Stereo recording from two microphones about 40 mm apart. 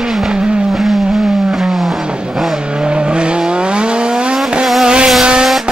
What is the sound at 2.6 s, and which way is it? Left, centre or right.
Vehicle, right.